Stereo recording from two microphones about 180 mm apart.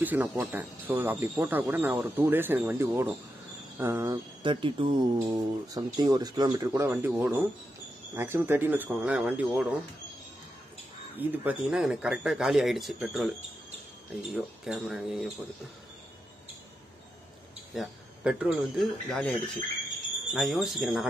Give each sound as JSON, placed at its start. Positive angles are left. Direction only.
{"t": 0.0, "sound": "speech", "side_deg": -10}
{"t": 4.4, "sound": "speech", "side_deg": -30}
{"t": 11.1, "sound": "speech", "side_deg": -5}
{"t": 14.3, "sound": "speech", "side_deg": 0}
{"t": 17.7, "sound": "speech", "side_deg": -5}